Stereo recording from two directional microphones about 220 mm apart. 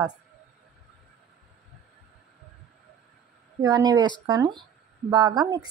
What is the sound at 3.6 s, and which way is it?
Speech, 15° right (ahead or behind).